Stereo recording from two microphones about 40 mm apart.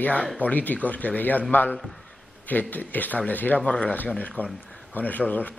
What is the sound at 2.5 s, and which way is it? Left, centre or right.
A man's voice, left.